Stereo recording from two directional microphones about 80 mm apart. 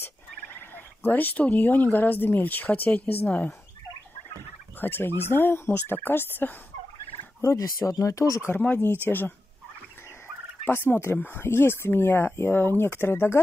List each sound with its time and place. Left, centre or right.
0.6 s speech: left
4.7 s speech: left
7.4 s speech: left
8.5 s speech: left
10.6 s speech: left